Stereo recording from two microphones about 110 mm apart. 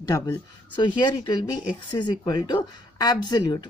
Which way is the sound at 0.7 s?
45° left (ahead or behind).